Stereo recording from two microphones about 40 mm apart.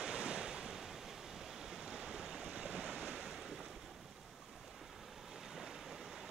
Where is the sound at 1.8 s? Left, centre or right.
Centre.